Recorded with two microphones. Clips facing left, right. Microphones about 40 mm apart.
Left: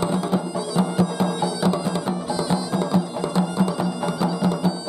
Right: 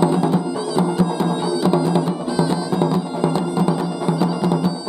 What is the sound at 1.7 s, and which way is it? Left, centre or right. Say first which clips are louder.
Music: right 6 dB; right.